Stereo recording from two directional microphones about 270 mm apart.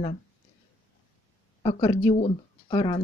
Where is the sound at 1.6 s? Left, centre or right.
Centre.